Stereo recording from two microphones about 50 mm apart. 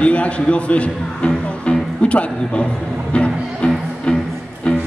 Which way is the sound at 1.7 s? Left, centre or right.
Left.